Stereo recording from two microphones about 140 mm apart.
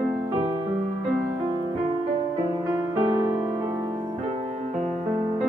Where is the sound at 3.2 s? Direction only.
35° right (ahead or behind).